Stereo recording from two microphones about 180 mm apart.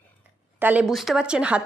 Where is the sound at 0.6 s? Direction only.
5° right (ahead or behind).